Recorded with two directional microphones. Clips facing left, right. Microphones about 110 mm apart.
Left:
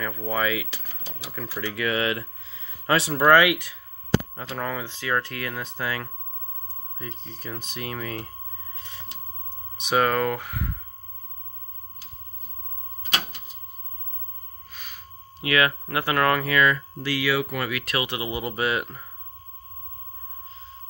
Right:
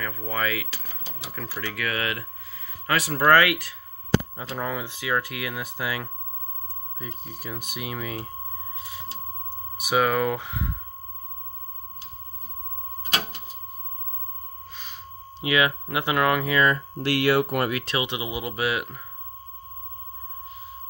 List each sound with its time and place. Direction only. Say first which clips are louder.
0.2 s speech: left 3 dB; 15° left (ahead or behind)
1.3 s speech: left 2 dB; 5° left (ahead or behind)
1.7 s speech: left 4 dB; 20° left (ahead or behind)
4.4 s speech: even; 10° right (ahead or behind)
8.7 s a sound: right 5 dB; 10° right (ahead or behind)
9.5 s speech: even; 10° right (ahead or behind)
15.4 s speech: even; 15° right (ahead or behind)
16.5 s speech: even; 35° right (ahead or behind)
17.0 s speech: right 4 dB; 60° right (ahead or behind)
17.8 s speech: even; 20° right (ahead or behind)
18.4 s speech: left 1 dB; 5° right (ahead or behind)